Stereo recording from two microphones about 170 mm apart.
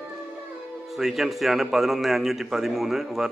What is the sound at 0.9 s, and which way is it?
A man's voice, centre (ahead or behind).